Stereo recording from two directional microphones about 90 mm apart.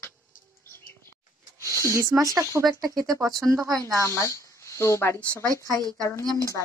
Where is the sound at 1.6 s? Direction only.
35° right (ahead or behind).